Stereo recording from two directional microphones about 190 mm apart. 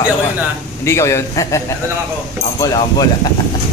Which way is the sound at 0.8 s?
15° left (ahead or behind).